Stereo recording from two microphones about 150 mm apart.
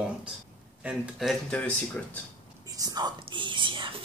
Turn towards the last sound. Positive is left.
turn(degrees=-35)  # may be behind; listen again after turning